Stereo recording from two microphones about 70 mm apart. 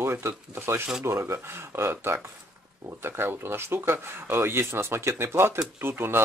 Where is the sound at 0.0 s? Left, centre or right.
Right.